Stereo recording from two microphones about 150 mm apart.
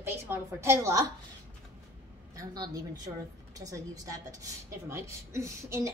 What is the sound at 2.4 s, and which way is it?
A woman's voice, 25° right (ahead or behind).